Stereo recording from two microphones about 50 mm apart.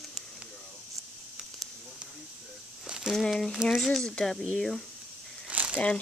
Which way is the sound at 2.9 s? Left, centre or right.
Centre.